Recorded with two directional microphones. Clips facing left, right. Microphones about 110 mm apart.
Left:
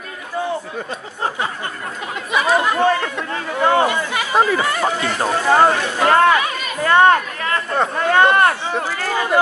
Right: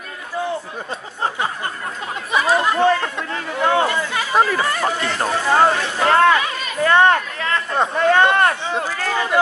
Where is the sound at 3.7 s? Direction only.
20° left (ahead or behind).